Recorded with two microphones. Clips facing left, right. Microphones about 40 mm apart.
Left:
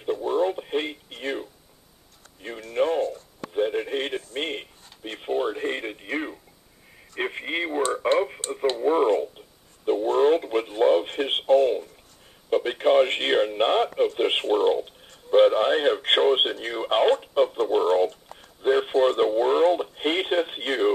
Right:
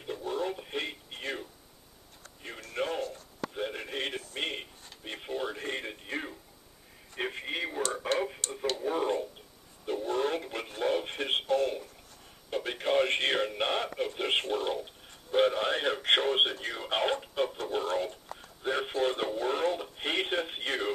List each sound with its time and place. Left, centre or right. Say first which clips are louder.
0.0 s radio: left 10 dB; left
2.7 s radio: left 10 dB; left
12.4 s a sound: left 10 dB; left
13.9 s radio: left 8 dB; left